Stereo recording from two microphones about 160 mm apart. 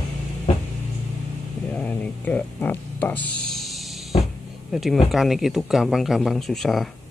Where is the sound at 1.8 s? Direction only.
10° left (ahead or behind).